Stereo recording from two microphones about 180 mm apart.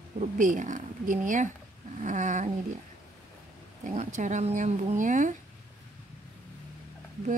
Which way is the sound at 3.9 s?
45° right (ahead or behind).